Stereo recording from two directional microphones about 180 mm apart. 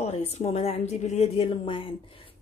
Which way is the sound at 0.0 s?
35° left (ahead or behind).